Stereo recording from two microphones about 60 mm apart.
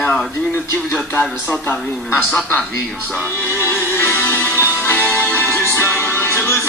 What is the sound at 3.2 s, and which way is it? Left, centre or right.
Music, left.